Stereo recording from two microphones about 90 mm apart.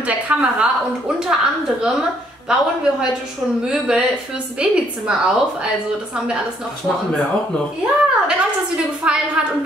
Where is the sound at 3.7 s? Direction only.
10° right (ahead or behind).